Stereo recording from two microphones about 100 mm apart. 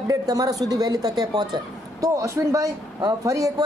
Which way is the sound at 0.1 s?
35° right (ahead or behind).